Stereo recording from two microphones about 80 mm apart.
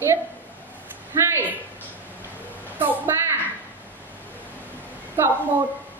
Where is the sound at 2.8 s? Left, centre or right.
Right.